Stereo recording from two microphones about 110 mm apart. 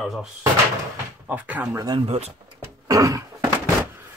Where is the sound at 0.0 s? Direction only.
Centre (ahead or behind).